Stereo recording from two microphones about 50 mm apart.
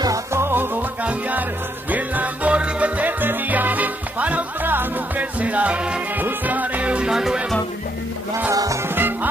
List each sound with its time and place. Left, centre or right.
0.1 s music: right
1.9 s music: right
5.4 s music: right
6.1 s music: right
7.1 s music: centre
8.8 s music: right